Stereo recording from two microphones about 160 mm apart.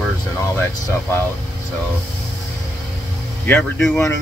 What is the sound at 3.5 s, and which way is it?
Speech, 5° left (ahead or behind).